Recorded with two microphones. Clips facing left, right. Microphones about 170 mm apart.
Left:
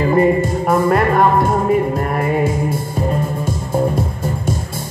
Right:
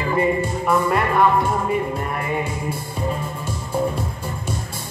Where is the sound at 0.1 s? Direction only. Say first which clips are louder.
Left 4 dB; 45° left (ahead or behind).